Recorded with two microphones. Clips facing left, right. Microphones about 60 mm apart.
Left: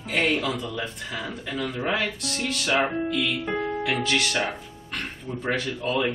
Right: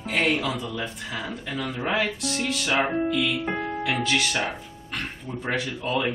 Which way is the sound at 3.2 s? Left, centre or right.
Centre.